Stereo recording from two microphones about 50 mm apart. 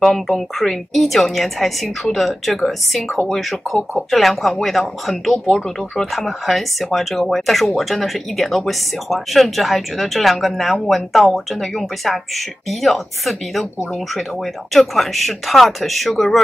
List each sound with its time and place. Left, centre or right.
0.0 s speech: centre